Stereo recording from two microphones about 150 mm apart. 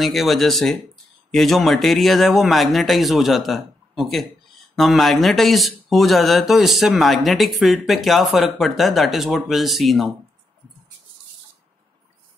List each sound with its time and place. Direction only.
0.0 s speech: centre (ahead or behind)